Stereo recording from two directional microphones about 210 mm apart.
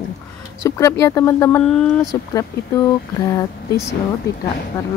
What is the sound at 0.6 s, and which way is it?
Speech, 15° left (ahead or behind).